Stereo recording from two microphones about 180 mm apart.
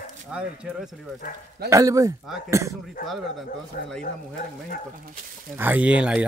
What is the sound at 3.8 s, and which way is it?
Speech, 60° left (ahead or behind).